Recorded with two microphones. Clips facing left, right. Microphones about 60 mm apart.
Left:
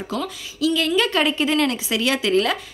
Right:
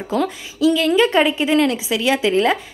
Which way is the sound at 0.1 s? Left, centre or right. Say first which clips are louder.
Right 8 dB; centre.